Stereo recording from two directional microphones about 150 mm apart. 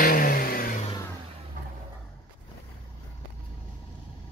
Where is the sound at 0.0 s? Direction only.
70° left (ahead or behind).